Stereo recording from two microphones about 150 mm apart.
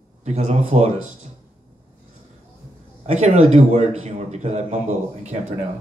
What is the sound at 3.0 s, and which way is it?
A man's voice, 45° right (ahead or behind).